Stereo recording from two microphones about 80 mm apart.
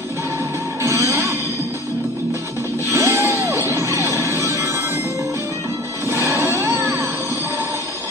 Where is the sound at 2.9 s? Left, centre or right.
Right.